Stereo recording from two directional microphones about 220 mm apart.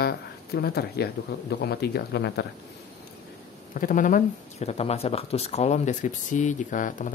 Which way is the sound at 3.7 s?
35° left (ahead or behind).